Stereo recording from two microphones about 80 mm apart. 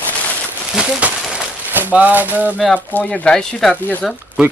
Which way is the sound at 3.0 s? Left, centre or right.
Centre.